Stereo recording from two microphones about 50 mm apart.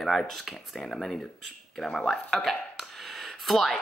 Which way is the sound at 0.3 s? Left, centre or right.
Centre.